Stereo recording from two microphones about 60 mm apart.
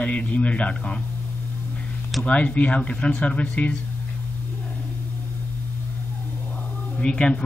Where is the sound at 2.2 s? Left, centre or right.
Left.